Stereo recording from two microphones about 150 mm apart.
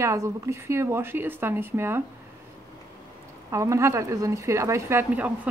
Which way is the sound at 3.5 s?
20° right (ahead or behind).